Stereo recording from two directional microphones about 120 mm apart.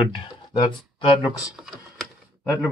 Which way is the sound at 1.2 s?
Centre (ahead or behind).